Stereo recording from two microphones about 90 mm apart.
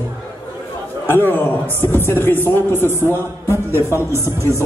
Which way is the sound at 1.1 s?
25° left (ahead or behind).